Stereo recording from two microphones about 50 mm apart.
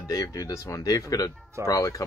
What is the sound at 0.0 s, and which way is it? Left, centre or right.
Speech, left.